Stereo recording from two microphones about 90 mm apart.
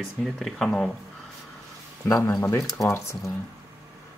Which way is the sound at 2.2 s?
40° left (ahead or behind).